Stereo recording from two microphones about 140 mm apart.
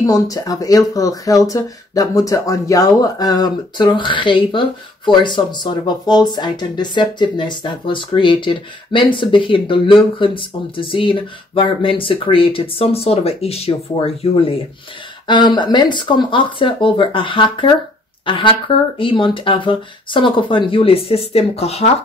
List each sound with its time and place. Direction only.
0.0 s speech: 25° left (ahead or behind); by 14.6 s 40° left (ahead or behind)
15.2 s speech: 30° left (ahead or behind); by 21.9 s 45° left (ahead or behind)